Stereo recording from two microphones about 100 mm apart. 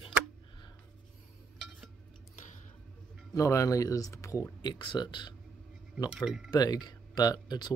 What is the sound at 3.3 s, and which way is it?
Speech, 30° left (ahead or behind).